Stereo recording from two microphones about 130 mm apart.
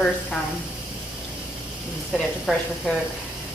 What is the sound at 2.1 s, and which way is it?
Speech, centre (ahead or behind).